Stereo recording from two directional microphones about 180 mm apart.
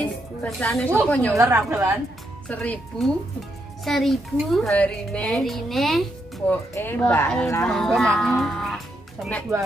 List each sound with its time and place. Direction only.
0.0 s a woman's voice: 5° left (ahead or behind)
1.4 s a woman's voice: 15° right (ahead or behind)
2.4 s speech: 5° left (ahead or behind)
6.5 s speech: 10° left (ahead or behind)